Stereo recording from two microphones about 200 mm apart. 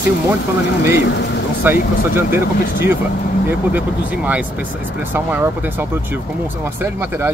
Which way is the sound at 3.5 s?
10° right (ahead or behind).